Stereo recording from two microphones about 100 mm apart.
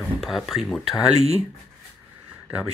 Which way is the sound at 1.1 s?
90° right.